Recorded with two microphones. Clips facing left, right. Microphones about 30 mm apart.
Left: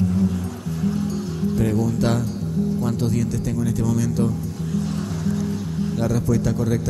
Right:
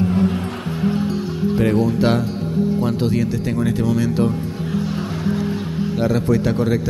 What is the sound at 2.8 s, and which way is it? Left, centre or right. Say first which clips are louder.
Speech: right 4 dB; right.